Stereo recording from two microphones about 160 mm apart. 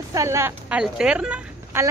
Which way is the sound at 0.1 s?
20° right (ahead or behind).